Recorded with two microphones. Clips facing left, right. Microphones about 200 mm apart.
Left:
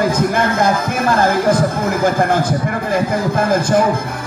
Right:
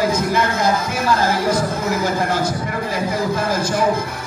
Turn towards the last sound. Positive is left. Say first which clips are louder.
# left 4 dB
turn(degrees=50)  # may be behind; listen again after turning